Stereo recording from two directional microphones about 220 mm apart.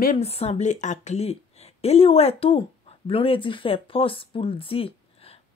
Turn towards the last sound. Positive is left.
turn(degrees=25)  # may be behind; listen again after turning